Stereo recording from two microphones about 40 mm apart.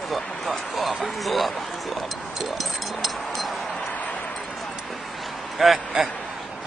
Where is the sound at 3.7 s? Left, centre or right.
Left.